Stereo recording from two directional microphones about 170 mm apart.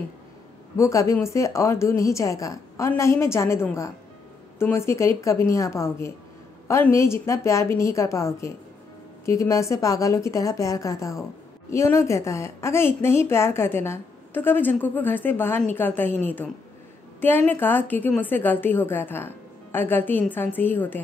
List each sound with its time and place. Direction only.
0.7 s a woman's voice: 20° left (ahead or behind)
17.2 s speech: 10° left (ahead or behind)